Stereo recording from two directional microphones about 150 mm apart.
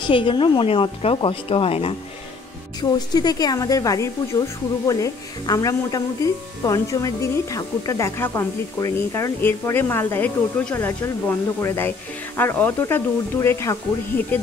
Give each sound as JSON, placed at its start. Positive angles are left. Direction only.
{"t": 0.0, "sound": "speech", "side_deg": 35}
{"t": 2.8, "sound": "speech", "side_deg": 25}